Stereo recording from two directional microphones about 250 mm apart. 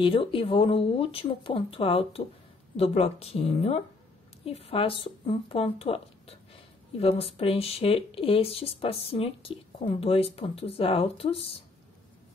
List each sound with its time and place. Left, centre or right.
0.0 s speech: left